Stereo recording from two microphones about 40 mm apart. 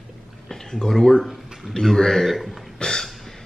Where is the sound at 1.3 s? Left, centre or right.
Centre.